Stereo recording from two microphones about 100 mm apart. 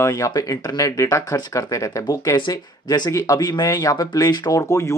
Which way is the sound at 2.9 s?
35° left (ahead or behind).